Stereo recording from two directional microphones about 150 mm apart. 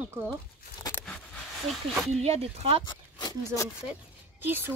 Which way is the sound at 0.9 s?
15° left (ahead or behind).